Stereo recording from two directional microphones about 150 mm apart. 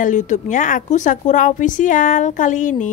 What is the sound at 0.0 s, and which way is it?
Speech, 55° left (ahead or behind).